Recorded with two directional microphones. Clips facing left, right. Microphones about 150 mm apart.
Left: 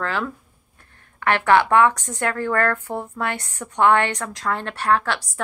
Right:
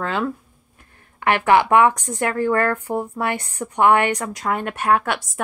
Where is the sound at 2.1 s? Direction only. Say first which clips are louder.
Right 3 dB; 15° right (ahead or behind).